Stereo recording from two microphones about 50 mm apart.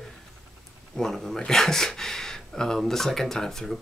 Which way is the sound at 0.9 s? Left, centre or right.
Centre.